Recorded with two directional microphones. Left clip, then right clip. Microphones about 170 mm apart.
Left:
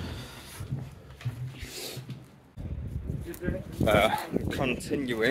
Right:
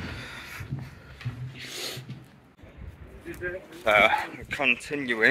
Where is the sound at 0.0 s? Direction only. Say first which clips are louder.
Right 4 dB; 25° left (ahead or behind).